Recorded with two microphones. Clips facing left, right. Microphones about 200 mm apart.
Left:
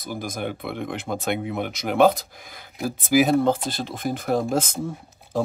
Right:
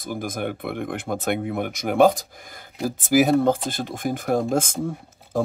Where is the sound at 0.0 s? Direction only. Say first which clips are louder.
Right 2 dB; 50° right (ahead or behind).